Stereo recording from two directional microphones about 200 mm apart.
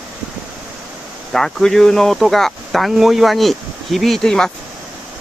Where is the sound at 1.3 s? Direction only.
Centre (ahead or behind).